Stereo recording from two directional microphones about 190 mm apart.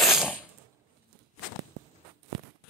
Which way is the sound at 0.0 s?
Centre (ahead or behind).